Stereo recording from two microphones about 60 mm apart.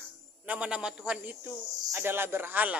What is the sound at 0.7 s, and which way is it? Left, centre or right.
Speech, centre.